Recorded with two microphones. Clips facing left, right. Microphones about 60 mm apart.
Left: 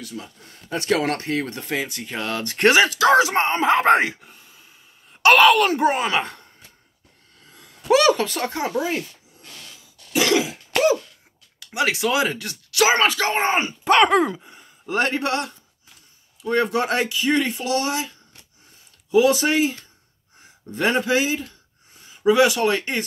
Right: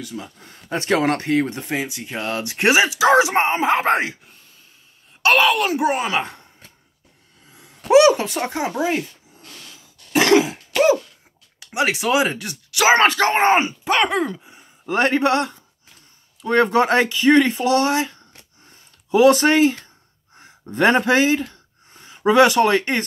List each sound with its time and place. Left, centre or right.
0.0 s speech: right
3.6 s speech: centre
7.4 s a sound: centre
7.9 s speech: centre
10.1 s cough: right
11.6 s speech: right
12.9 s speech: right
13.4 s speech: right
13.8 s speech: centre
14.9 s speech: right